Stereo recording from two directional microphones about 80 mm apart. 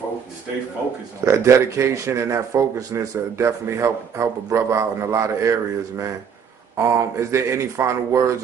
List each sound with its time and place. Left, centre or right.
1.2 s speech: right